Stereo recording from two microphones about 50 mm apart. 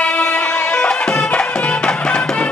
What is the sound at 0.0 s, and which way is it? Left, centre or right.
Music, left.